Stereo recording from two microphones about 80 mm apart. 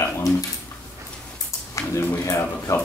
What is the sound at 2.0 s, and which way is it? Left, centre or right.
Speech, left.